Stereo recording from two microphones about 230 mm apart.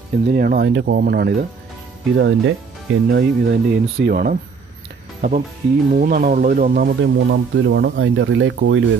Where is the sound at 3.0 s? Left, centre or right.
Right.